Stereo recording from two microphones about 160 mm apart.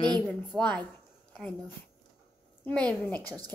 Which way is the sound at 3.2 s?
25° right (ahead or behind).